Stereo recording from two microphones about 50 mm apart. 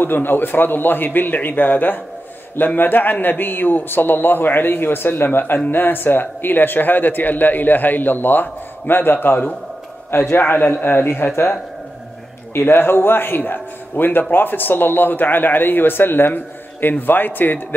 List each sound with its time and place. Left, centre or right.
0.0 s speech: left
12.5 s a man's voice: left